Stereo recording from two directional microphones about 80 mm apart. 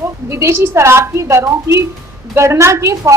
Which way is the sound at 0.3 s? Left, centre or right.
Right.